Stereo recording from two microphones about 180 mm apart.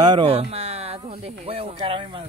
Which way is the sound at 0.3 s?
35° right (ahead or behind).